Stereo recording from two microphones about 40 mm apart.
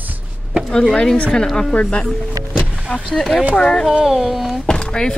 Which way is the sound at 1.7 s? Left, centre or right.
Left.